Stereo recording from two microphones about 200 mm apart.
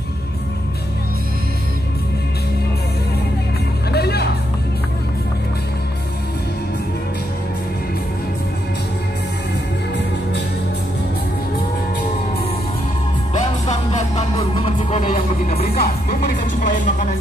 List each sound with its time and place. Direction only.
3.9 s music: 55° left (ahead or behind)
13.9 s music: 30° left (ahead or behind)
15.8 s music: 50° left (ahead or behind)